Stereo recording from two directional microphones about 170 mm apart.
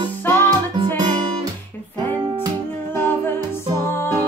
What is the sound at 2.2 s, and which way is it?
Music, 25° right (ahead or behind).